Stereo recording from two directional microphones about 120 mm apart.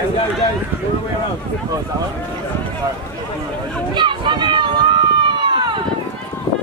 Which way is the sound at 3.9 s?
40° right (ahead or behind).